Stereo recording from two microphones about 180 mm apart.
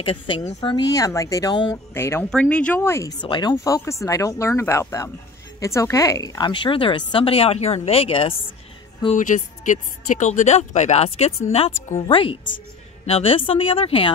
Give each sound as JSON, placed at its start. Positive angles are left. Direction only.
{"t": 0.0, "sound": "a woman's voice", "side_deg": 25}
{"t": 9.1, "sound": "a woman's voice", "side_deg": 45}
{"t": 12.4, "sound": "music", "side_deg": 45}
{"t": 13.1, "sound": "speech", "side_deg": 30}